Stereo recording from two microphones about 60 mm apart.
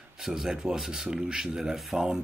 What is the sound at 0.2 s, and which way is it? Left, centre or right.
Speech, centre.